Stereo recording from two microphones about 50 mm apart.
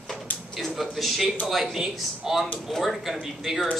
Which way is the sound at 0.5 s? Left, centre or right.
Centre.